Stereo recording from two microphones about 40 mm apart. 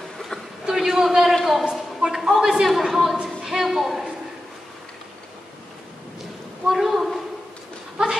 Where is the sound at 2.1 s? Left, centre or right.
Centre.